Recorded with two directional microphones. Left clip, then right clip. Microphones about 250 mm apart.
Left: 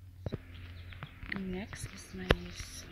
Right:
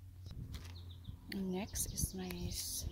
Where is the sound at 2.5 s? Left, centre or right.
Right.